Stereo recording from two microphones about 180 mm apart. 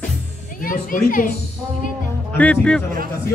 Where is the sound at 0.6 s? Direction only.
50° left (ahead or behind).